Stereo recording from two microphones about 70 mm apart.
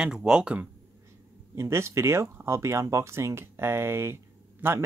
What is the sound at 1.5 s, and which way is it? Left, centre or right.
Speech, right.